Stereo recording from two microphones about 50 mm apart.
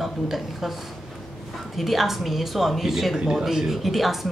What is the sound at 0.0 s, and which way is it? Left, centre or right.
Speech, centre.